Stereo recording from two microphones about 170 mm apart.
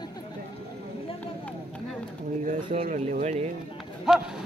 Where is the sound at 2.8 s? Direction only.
50° right (ahead or behind).